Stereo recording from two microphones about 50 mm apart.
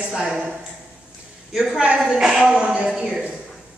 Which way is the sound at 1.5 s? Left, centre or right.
Centre.